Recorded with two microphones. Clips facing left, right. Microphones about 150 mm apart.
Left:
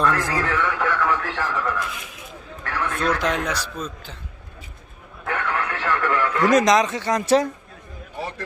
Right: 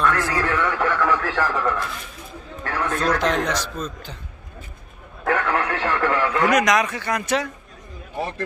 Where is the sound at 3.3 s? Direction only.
10° left (ahead or behind).